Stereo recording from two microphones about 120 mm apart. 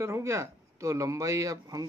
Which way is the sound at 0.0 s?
25° right (ahead or behind).